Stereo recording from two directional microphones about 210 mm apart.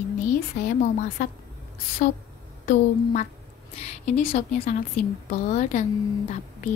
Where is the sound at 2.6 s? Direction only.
35° left (ahead or behind).